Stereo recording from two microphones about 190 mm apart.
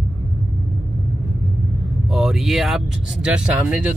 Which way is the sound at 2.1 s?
Centre (ahead or behind).